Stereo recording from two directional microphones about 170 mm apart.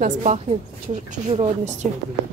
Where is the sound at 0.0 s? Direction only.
45° right (ahead or behind).